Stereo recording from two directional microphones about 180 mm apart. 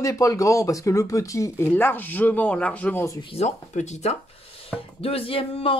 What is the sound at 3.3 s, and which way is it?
Speech, 40° left (ahead or behind).